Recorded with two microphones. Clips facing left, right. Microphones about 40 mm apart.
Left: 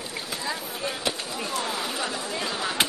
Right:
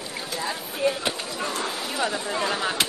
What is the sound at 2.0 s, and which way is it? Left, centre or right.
Speech, centre.